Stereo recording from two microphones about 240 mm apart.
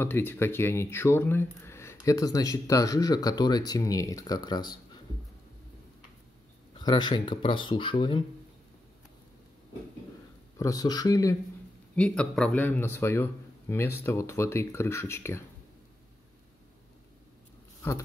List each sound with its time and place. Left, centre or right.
0.0 s speech: centre
6.7 s speech: centre
10.6 s speech: centre
17.8 s speech: centre